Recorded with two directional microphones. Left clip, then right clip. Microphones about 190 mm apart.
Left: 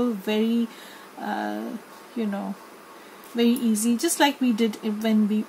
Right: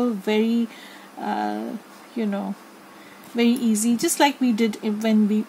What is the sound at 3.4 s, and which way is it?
Speech, 40° right (ahead or behind).